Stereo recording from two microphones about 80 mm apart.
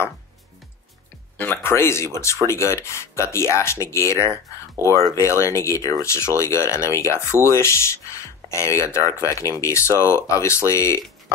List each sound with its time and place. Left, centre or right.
1.4 s speech: left